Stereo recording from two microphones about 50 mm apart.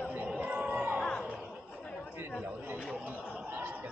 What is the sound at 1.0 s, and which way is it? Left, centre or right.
Music, left.